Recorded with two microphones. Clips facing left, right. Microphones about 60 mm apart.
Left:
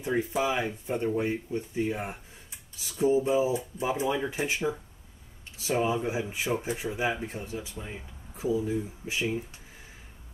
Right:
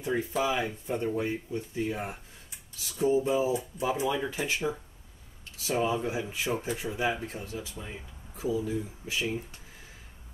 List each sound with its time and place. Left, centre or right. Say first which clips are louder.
0.0 s speech: left 1 dB; left
5.7 s speech: left 1 dB; centre
7.8 s a sound: left 1 dB; centre
8.5 s speech: left 2 dB; left; by 9.5 s centre